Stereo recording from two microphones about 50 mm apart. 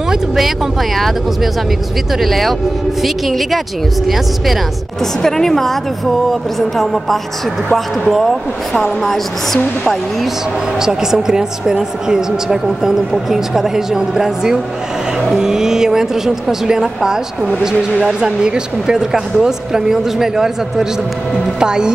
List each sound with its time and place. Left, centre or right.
0.9 s a woman's voice: centre
5.2 s a woman's voice: centre
10.8 s speech: centre